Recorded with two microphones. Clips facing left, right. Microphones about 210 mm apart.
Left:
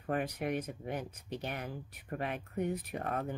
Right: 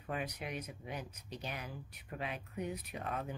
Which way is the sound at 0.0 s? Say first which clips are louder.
Left 6 dB; 50° left (ahead or behind).